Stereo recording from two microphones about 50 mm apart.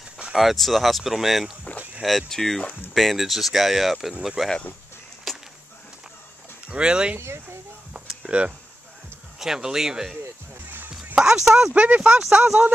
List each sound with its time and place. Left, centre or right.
0.4 s speech: centre
2.0 s speech: centre
5.3 s a sound: centre
6.7 s speech: centre
8.3 s speech: right
9.4 s speech: centre
11.1 s speech: centre
11.7 s speech: right
12.2 s speech: centre